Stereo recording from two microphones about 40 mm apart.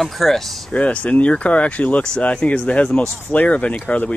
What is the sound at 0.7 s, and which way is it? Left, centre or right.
Speech, left.